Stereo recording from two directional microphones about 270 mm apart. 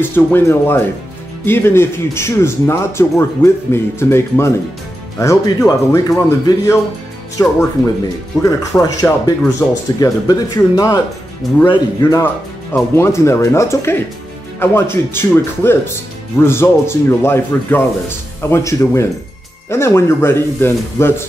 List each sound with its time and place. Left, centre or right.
0.0 s speech: centre